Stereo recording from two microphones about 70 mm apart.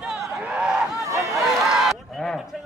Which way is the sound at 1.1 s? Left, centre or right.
Right.